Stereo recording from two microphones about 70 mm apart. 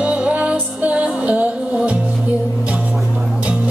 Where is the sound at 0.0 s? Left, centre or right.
Centre.